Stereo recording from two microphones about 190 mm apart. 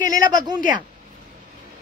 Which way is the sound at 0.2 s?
20° right (ahead or behind).